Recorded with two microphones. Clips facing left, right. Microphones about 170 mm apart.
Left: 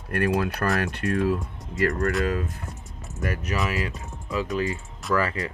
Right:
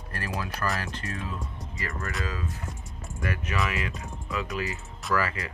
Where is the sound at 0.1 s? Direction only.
60° left (ahead or behind).